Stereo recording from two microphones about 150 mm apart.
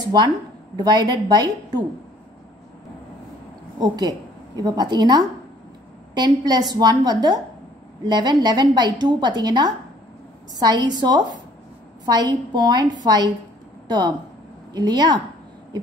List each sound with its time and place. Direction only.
0.7 s a woman's voice: 30° right (ahead or behind)
3.8 s a woman's voice: 25° right (ahead or behind)